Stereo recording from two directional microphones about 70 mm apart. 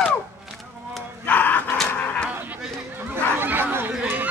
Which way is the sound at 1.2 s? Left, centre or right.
Left.